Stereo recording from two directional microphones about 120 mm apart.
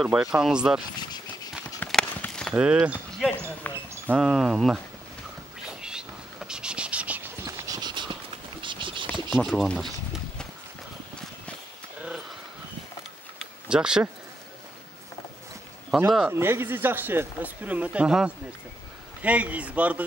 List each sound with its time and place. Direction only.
0.0 s speech: 5° right (ahead or behind)
1.8 s clip-clop: 15° left (ahead or behind)
2.2 s a sound: 10° left (ahead or behind)
2.5 s speech: 10° right (ahead or behind)
3.6 s speech: 15° left (ahead or behind)
4.2 s speech: 5° right (ahead or behind)
5.7 s a sound: 5° right (ahead or behind)
7.4 s a sound: 30° right (ahead or behind)
9.3 s speech: 5° left (ahead or behind)
13.7 s speech: 5° right (ahead or behind)
15.9 s speech: centre (ahead or behind)
16.3 s speech: 20° right (ahead or behind)